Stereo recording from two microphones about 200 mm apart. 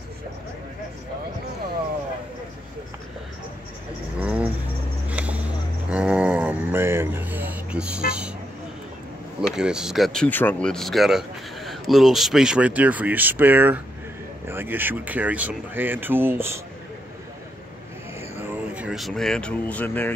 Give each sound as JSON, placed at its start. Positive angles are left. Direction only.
{"t": 4.2, "sound": "music", "side_deg": -5}
{"t": 5.0, "sound": "a sound", "side_deg": -5}
{"t": 9.6, "sound": "speech", "side_deg": -5}
{"t": 18.4, "sound": "speech", "side_deg": -10}